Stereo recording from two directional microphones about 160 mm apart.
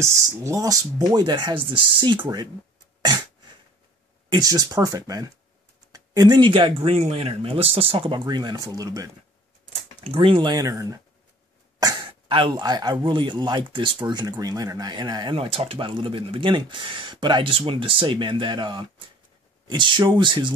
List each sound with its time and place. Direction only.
0.0 s speech: 20° right (ahead or behind)
4.3 s speech: 25° right (ahead or behind)
10.0 s speech: 35° right (ahead or behind)